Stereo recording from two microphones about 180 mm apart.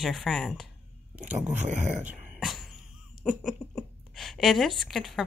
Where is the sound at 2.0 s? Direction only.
Centre (ahead or behind).